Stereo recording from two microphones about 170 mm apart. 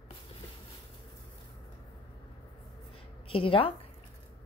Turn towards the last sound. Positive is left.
turn(degrees=30)  # may be behind; listen again after turning